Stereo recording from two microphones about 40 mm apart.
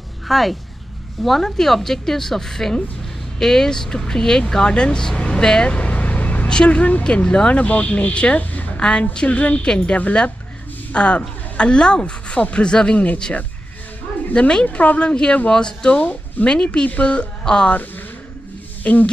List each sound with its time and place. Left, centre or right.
0.3 s speech: centre
5.7 s vehicle: left
6.5 s speech: left
7.2 s speech: left
7.5 s speech: left
9.3 s speech: left
9.7 s a woman's voice: left
12.9 s speech: left
14.5 s speech: left
14.8 s speech: left
15.0 s speech: left
16.0 s speech: left
17.4 s speech: centre
18.9 s speech: left